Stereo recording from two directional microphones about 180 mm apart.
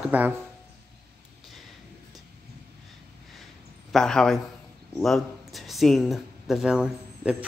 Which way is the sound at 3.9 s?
5° left (ahead or behind).